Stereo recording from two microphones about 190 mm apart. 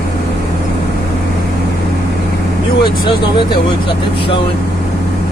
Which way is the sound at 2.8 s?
25° left (ahead or behind).